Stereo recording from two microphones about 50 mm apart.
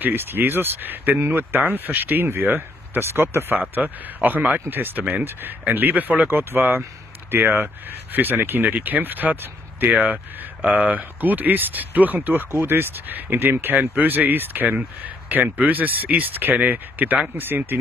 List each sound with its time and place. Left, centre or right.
0.0 s speech: right
3.0 s speech: right
3.7 s speech: right
4.6 s speech: right
12.4 s speech: right